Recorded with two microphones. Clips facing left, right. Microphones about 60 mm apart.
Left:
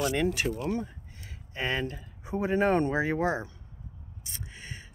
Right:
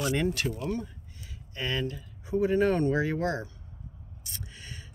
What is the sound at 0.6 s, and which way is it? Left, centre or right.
Speech, centre.